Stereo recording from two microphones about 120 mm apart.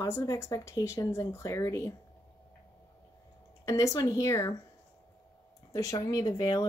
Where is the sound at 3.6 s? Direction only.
25° left (ahead or behind).